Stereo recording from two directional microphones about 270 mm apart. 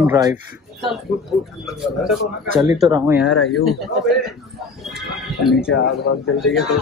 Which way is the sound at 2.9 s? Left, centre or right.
Centre.